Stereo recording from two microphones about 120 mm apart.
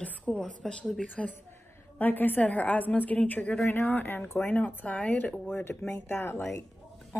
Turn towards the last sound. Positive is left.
turn(degrees=20)  # may be behind; listen again after turning